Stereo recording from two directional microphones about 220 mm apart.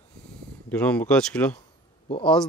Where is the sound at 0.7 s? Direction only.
5° left (ahead or behind).